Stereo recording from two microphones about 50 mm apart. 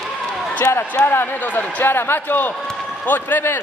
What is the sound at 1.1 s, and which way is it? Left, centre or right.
Speech, left.